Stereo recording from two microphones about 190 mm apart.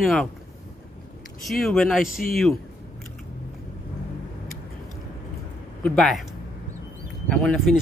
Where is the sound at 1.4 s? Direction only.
Centre (ahead or behind).